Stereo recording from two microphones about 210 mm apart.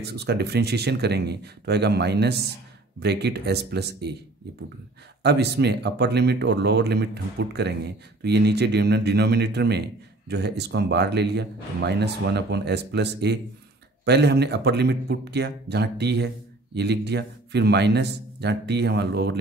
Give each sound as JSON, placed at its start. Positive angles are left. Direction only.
{"t": 0.0, "sound": "speech", "side_deg": -50}
{"t": 5.2, "sound": "speech", "side_deg": -50}